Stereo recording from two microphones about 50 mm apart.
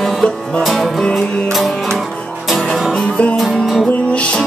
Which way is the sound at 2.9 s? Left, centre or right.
Left.